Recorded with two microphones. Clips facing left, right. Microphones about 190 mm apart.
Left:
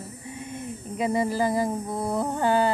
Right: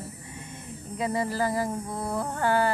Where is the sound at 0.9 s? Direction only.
20° left (ahead or behind).